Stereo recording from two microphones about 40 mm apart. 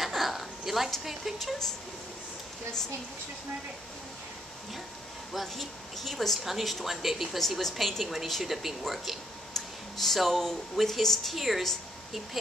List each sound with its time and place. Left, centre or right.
0.0 s a sound: centre
5.3 s speech: centre
7.3 s speech: centre
11.3 s speech: centre